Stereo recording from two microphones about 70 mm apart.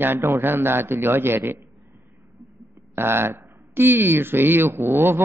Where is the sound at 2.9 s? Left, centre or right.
Right.